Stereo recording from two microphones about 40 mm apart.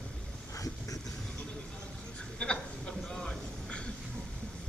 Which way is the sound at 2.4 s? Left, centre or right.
Left.